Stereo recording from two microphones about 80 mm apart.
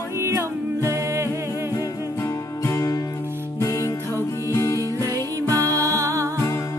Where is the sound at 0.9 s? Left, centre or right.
Right.